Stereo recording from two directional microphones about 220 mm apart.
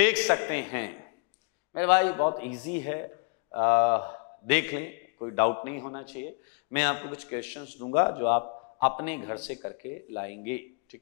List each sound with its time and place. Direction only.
0.0 s a man's voice: 10° left (ahead or behind)
4.5 s a man's voice: 15° left (ahead or behind)